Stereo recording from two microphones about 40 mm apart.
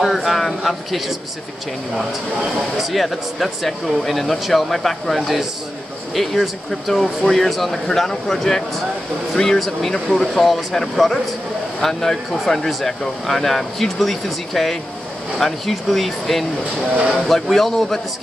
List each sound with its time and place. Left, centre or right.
0.0 s speech: centre
2.4 s speech: centre
16.9 s speech: right
17.3 s speech: centre